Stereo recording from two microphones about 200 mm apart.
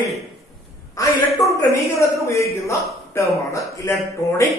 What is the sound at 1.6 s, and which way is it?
A man's voice, 15° left (ahead or behind).